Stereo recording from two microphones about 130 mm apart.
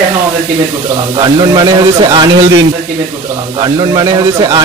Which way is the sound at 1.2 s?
35° right (ahead or behind).